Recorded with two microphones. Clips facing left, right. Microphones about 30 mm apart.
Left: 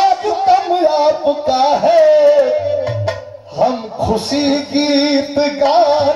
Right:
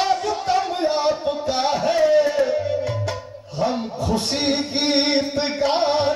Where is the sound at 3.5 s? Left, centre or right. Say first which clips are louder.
Left 8 dB; centre.